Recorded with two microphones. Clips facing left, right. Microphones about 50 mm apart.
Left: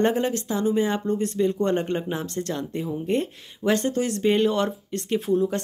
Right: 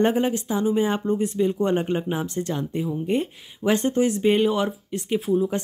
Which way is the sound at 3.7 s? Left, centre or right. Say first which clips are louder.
Right 2 dB; centre.